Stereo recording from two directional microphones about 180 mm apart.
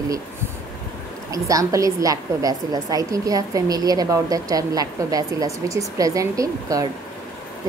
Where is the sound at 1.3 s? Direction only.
20° right (ahead or behind).